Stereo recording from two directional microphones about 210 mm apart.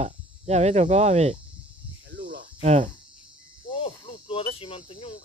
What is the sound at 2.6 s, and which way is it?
Speech, 30° right (ahead or behind).